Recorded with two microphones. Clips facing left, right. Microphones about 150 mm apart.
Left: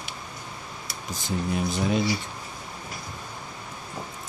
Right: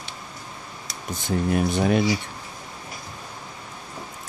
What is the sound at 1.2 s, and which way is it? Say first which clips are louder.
Speech: right 5 dB; 60° right (ahead or behind).